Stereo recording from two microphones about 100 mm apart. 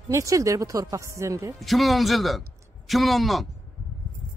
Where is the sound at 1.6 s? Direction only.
Centre (ahead or behind).